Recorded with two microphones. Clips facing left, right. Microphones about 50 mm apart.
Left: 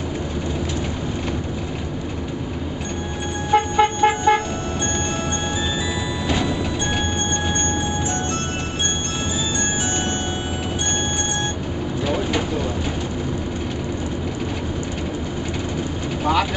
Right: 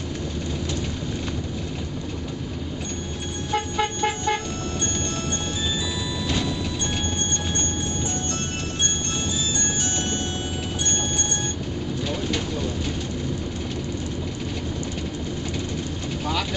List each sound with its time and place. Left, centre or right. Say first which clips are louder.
3.5 s vehicle: left 8 dB; centre
6.2 s music: left 4 dB; centre
12.1 s bird: left 7 dB; centre